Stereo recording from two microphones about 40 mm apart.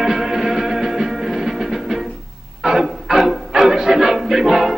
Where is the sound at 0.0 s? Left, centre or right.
Centre.